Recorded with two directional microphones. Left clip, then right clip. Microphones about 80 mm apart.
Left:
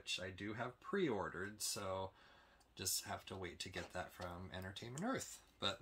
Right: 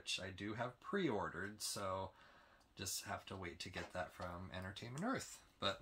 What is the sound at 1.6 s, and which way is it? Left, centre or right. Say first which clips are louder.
Speech: even; left.